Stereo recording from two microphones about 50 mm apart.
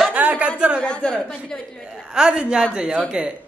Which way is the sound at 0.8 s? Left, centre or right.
Centre.